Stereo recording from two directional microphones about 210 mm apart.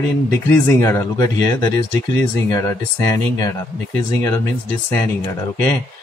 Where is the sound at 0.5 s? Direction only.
10° left (ahead or behind).